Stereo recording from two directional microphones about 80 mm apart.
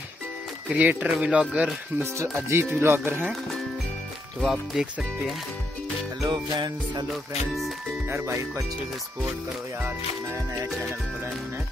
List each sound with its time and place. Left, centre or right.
0.7 s speech: centre
2.0 s speech: right
4.4 s music: centre
6.2 s music: right
7.1 s music: centre
8.1 s speech: right
9.8 s speech: right